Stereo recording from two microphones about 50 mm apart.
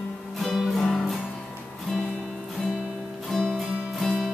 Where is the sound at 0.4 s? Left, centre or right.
Centre.